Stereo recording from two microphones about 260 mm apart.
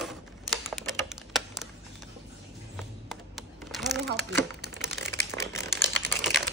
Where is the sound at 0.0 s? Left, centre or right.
Centre.